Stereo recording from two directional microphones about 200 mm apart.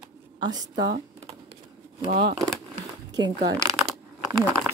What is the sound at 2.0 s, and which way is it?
Speech, 45° right (ahead or behind).